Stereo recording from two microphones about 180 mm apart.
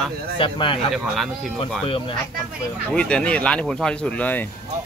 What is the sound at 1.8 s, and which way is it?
Speech, 30° left (ahead or behind).